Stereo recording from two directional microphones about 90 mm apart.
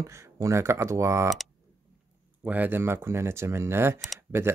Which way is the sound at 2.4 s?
20° right (ahead or behind).